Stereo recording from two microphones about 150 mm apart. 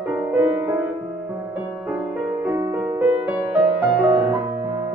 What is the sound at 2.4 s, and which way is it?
Music, 20° right (ahead or behind).